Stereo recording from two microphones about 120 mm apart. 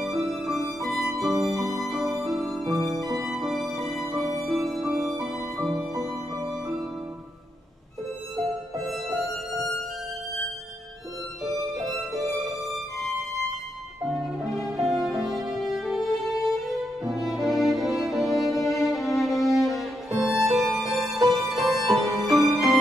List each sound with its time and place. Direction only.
0.0 s music: centre (ahead or behind)
4.4 s music: 25° right (ahead or behind)
4.6 s music: centre (ahead or behind)
8.7 s music: centre (ahead or behind)
12.2 s music: centre (ahead or behind)
14.8 s music: centre (ahead or behind)